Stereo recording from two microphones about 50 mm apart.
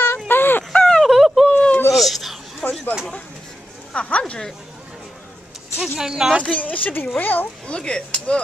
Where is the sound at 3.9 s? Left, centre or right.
Left.